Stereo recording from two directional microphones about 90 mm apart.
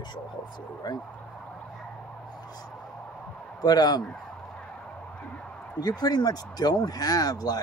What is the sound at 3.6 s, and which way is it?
Speech, 45° left (ahead or behind).